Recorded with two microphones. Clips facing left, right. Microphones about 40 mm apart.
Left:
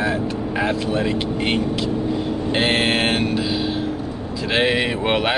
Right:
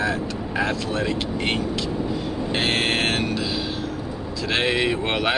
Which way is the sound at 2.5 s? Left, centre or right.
Centre.